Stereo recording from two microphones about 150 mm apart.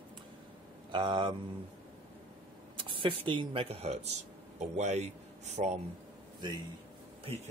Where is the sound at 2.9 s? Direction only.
35° right (ahead or behind).